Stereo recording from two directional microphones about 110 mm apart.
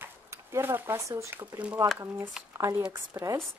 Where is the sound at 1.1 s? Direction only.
25° right (ahead or behind).